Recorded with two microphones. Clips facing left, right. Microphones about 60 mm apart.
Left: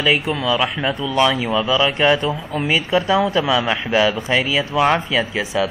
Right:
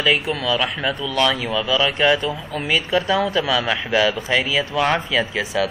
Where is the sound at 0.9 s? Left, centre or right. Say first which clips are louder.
Left 4 dB; centre.